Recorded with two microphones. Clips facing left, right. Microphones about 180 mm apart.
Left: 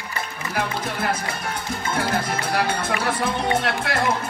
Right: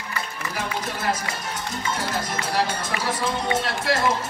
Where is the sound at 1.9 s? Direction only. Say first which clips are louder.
Left 7 dB; 60° left (ahead or behind).